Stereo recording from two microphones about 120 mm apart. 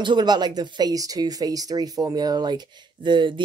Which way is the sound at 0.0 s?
40° right (ahead or behind).